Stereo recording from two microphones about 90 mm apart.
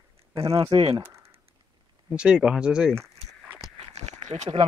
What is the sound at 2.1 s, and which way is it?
Speech, 10° right (ahead or behind).